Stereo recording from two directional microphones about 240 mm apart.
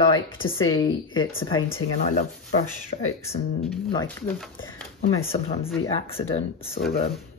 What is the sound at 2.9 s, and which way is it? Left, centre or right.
Speech, left.